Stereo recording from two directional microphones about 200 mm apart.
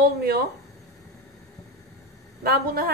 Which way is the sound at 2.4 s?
50° right (ahead or behind).